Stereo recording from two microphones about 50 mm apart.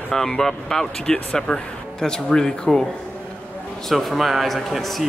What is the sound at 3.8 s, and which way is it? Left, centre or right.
Speech, centre.